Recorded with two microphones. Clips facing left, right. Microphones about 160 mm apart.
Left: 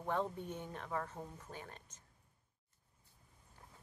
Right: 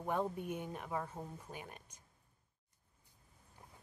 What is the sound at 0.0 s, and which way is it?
Speech, 10° right (ahead or behind).